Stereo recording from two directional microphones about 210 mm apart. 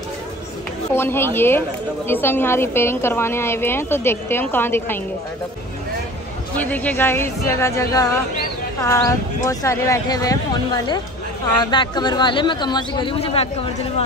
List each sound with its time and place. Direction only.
0.9 s a woman's voice: 10° left (ahead or behind)
6.5 s a woman's voice: 5° left (ahead or behind); by 14.0 s 30° left (ahead or behind)